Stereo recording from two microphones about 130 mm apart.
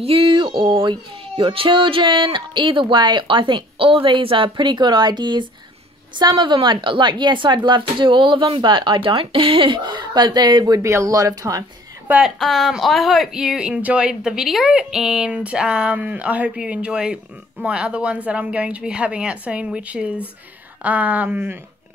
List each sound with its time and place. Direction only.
0.0 s speech: 45° right (ahead or behind); by 11.6 s 25° right (ahead or behind)
12.4 s speech: centre (ahead or behind)